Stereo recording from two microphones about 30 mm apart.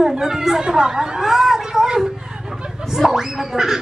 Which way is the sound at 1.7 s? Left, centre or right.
Centre.